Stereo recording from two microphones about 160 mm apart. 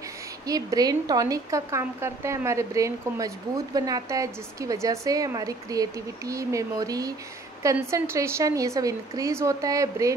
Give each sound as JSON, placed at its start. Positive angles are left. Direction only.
{"t": 0.5, "sound": "a woman's voice", "side_deg": -20}